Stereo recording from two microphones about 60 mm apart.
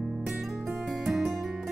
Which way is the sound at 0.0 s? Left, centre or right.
Centre.